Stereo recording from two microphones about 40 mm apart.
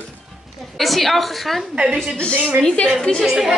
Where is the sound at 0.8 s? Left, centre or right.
Centre.